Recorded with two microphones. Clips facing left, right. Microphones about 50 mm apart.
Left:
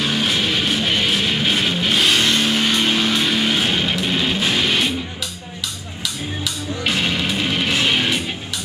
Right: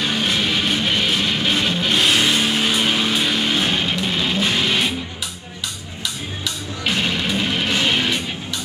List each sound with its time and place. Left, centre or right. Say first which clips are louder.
0.0 s music: left 1 dB; centre
6.9 s music: even; centre